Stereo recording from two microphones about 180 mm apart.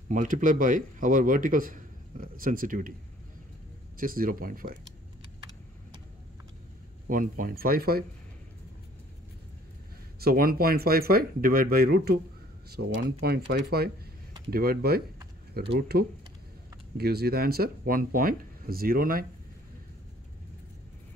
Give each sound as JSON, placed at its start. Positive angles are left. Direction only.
{"t": 0.1, "sound": "speech", "side_deg": -45}
{"t": 4.0, "sound": "speech", "side_deg": -50}
{"t": 7.1, "sound": "speech", "side_deg": -50}
{"t": 10.2, "sound": "speech", "side_deg": -55}